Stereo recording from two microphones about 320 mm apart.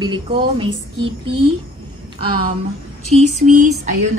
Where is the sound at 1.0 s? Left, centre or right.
Right.